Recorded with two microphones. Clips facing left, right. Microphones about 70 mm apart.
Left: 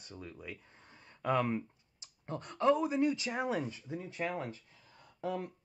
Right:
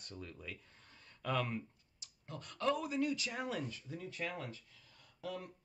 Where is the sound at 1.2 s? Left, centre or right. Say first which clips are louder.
Left 6 dB; left.